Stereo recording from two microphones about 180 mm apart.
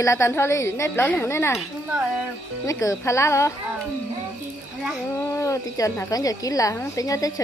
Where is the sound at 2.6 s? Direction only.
20° left (ahead or behind).